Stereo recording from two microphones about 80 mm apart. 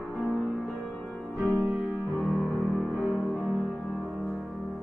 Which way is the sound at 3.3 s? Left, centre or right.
Centre.